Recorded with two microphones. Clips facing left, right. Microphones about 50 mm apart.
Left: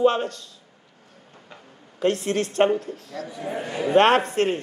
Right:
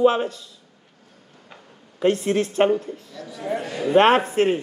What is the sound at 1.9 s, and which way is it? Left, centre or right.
A man's voice, centre.